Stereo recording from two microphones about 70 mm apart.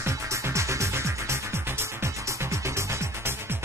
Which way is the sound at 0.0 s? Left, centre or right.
Right.